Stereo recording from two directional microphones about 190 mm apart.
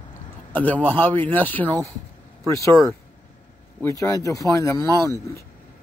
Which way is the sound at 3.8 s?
15° left (ahead or behind).